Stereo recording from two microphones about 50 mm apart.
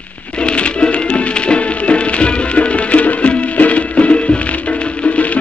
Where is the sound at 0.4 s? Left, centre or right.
Left.